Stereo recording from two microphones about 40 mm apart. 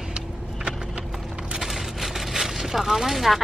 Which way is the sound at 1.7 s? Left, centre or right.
Centre.